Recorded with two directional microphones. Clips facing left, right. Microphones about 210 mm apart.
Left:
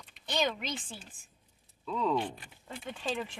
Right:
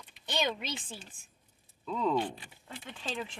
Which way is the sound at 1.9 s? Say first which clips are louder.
Even; 5° right (ahead or behind).